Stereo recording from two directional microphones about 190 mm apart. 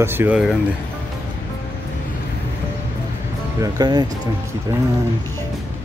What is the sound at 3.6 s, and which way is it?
Speech, 20° right (ahead or behind).